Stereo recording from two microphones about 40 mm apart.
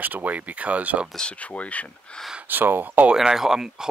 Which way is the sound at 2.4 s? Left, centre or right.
Right.